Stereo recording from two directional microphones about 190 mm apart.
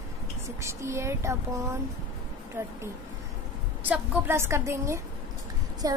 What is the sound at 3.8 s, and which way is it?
Speech, 10° right (ahead or behind).